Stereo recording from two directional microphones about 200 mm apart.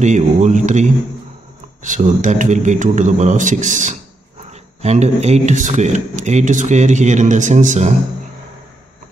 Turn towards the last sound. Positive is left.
turn(degrees=-35)  # may be behind; listen again after turning